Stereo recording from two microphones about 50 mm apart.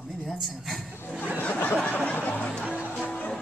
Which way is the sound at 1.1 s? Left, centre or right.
Right.